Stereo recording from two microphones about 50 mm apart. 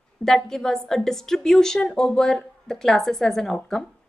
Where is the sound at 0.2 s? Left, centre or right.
Centre.